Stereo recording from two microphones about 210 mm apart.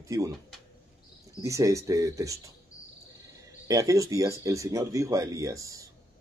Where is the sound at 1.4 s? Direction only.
15° right (ahead or behind).